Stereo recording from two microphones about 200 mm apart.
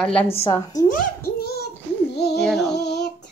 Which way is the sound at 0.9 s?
50° left (ahead or behind).